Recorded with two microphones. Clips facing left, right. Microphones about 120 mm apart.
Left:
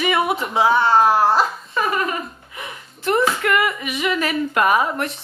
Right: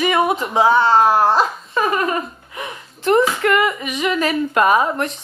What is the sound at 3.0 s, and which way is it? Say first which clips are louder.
Speech: right 4 dB; 25° right (ahead or behind).